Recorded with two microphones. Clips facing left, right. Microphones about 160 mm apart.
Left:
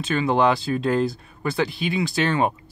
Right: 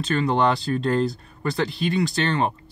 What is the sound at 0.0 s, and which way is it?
Speech, centre (ahead or behind).